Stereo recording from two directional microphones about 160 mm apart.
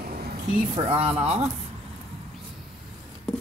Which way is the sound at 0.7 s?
40° right (ahead or behind).